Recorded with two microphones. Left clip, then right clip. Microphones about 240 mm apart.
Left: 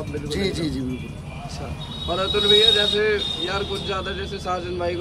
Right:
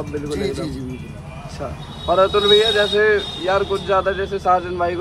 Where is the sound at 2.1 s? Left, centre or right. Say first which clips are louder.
Right 5 dB; centre.